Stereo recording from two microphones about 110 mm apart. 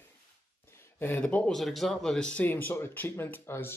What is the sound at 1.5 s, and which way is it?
Speech, centre (ahead or behind).